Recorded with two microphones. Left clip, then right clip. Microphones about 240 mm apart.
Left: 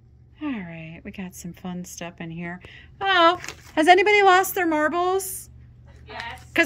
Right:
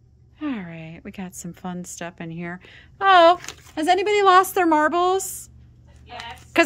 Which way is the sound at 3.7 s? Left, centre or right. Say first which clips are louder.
Left 4 dB; centre.